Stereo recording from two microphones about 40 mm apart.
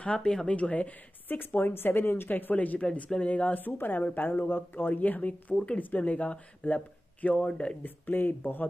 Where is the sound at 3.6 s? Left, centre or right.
Left.